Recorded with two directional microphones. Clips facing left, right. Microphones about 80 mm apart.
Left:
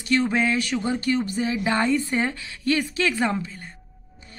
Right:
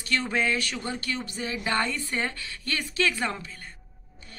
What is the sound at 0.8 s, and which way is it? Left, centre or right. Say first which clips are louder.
A woman's voice: left 9 dB; left.